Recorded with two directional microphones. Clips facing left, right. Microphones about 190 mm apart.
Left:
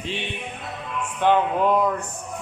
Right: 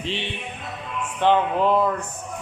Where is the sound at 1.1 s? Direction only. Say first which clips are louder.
Even; 10° left (ahead or behind).